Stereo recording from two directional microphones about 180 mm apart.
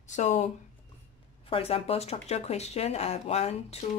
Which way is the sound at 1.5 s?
35° left (ahead or behind).